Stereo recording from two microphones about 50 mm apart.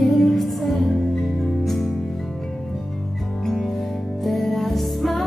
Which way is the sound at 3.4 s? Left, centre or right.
Centre.